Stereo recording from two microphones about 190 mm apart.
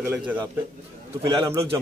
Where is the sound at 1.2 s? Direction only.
20° right (ahead or behind).